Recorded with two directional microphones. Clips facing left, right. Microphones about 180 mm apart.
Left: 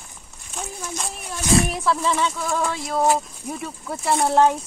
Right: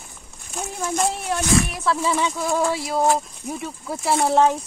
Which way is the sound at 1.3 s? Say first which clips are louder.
Right 8 dB; 90° right.